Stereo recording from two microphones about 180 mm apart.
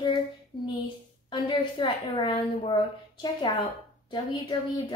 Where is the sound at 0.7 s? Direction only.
25° left (ahead or behind).